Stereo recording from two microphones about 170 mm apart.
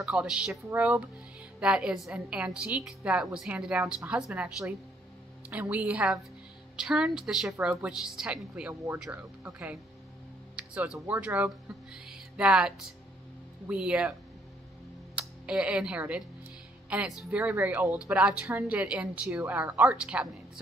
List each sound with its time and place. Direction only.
0.0 s a woman's voice: 5° right (ahead or behind)
15.1 s a woman's voice: 5° right (ahead or behind)